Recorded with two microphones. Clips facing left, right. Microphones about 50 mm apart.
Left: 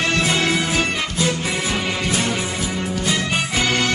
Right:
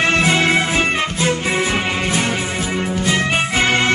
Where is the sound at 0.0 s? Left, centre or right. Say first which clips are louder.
Right 4 dB; right.